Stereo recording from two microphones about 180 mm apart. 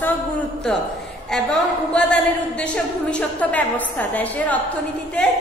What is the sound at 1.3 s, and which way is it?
A woman's voice, 5° left (ahead or behind).